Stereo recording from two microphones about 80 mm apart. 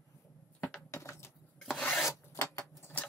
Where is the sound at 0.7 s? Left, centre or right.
Left.